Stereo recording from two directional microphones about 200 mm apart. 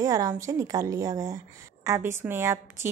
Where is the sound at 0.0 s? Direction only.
15° right (ahead or behind).